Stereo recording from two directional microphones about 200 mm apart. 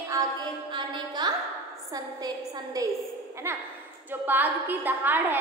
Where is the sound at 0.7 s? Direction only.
20° right (ahead or behind).